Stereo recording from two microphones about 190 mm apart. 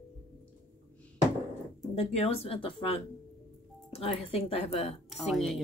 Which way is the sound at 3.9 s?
30° left (ahead or behind).